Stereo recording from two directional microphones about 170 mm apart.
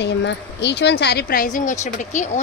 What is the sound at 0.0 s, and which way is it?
A woman's voice, 90° left.